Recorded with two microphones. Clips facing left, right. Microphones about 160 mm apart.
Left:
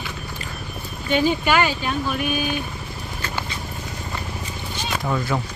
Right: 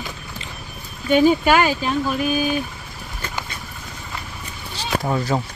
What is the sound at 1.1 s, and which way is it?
Speech, 40° right (ahead or behind).